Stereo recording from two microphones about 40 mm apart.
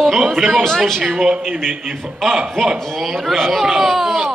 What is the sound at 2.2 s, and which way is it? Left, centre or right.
Speech, centre.